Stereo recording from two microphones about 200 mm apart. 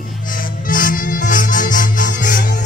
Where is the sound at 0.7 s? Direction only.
45° left (ahead or behind).